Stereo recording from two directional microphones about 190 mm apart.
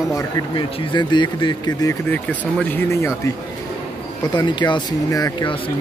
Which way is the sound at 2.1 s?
10° left (ahead or behind).